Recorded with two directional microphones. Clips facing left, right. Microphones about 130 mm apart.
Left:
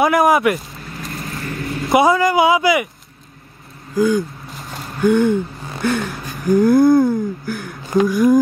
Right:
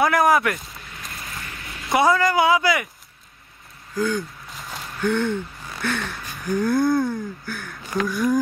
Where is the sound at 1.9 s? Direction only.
15° left (ahead or behind).